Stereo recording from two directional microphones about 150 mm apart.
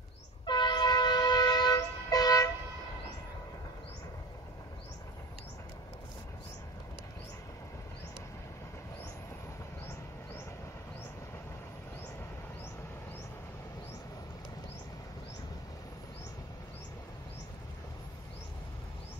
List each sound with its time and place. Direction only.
0.5 s train: 30° left (ahead or behind)